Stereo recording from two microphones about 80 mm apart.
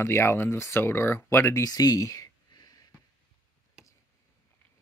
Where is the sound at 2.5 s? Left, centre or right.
Left.